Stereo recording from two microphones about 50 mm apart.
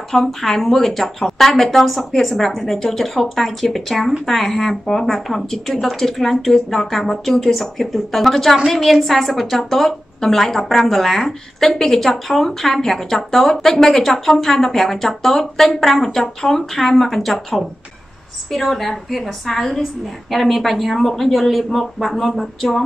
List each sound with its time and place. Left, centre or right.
0.1 s a woman's voice: centre